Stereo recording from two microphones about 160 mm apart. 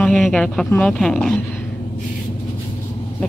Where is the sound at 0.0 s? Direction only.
Centre (ahead or behind).